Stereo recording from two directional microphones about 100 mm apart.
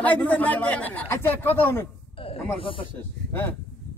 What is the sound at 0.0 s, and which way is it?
Speech, 15° left (ahead or behind).